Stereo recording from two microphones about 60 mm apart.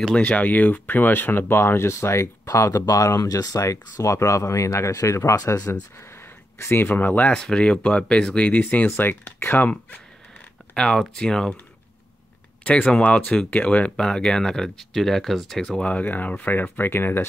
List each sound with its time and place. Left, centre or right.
0.2 s speech: left
2.4 s speech: left
6.6 s speech: left
7.3 s speech: centre
10.7 s speech: centre
12.6 s speech: left
14.0 s speech: centre
15.7 s speech: left